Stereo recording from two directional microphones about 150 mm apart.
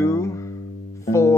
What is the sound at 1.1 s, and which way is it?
Music, 20° left (ahead or behind).